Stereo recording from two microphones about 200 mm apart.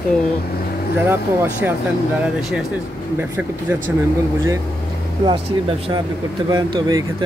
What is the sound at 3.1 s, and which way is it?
Speech, 10° right (ahead or behind).